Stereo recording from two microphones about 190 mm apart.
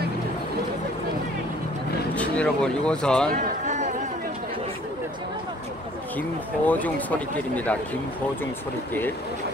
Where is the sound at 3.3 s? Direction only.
40° right (ahead or behind).